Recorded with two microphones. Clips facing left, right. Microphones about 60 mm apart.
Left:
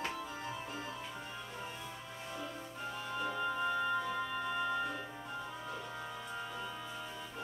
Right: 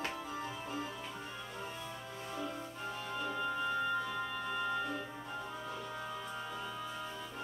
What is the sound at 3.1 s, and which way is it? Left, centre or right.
Music, centre.